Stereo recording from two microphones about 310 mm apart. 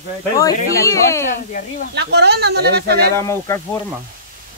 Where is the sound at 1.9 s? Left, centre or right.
Right.